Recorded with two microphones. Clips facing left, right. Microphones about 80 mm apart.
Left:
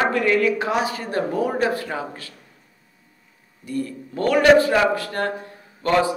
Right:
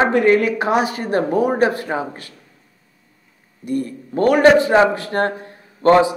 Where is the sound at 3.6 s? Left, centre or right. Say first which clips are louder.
Right 4 dB; right.